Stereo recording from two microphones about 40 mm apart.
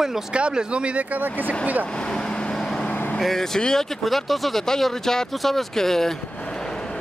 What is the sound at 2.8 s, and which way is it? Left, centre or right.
Vehicle, left.